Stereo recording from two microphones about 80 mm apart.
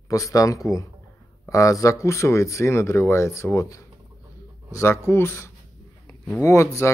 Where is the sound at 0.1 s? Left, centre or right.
Left.